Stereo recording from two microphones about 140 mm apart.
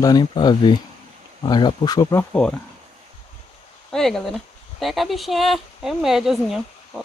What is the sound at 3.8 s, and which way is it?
Speech, 5° left (ahead or behind).